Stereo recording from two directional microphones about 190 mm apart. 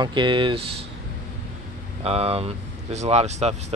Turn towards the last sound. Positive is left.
turn(degrees=-35)  # may be behind; listen again after turning